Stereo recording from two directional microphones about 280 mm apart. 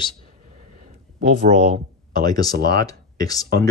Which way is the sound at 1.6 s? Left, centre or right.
Right.